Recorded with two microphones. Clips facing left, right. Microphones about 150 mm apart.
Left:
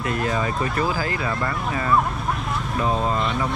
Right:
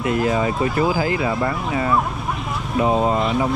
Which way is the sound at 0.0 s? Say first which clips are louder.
Right 5 dB; 20° right (ahead or behind).